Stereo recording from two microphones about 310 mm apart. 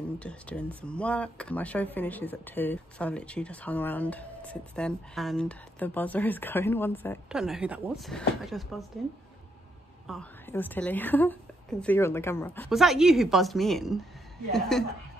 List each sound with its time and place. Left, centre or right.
0.2 s speech: centre
10.0 s speech: centre